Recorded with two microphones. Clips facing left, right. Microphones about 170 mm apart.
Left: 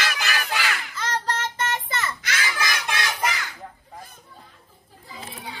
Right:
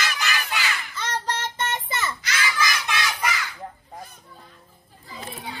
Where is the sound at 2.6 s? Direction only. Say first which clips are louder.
Right 1 dB; 45° left (ahead or behind).